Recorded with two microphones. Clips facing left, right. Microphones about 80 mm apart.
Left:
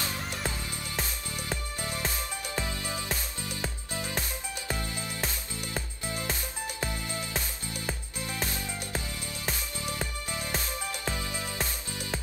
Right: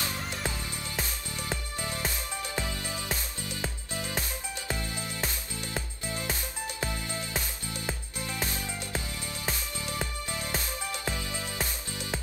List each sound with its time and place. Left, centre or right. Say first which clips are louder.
2.6 s music: left 1 dB; left
4.8 s music: even; right
6.8 s music: even; right
9.8 s music: even; left